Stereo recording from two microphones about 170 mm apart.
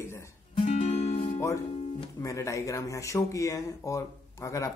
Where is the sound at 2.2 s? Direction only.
20° left (ahead or behind).